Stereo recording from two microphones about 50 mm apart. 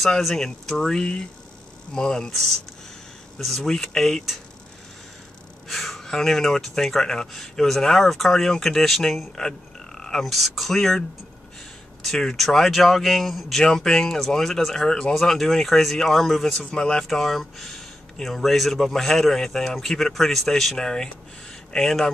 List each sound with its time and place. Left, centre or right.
0.2 s speech: centre
5.7 s speech: centre
10.2 s speech: centre
12.4 s speech: centre
16.7 s speech: centre
17.1 s speech: centre